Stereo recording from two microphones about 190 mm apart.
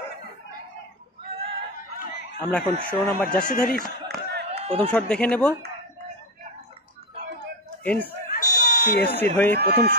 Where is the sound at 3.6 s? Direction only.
5° left (ahead or behind).